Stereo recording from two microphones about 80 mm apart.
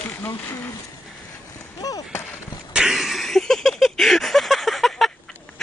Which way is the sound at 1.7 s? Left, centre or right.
Left.